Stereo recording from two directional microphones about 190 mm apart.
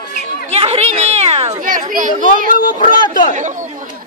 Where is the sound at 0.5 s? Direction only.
35° right (ahead or behind).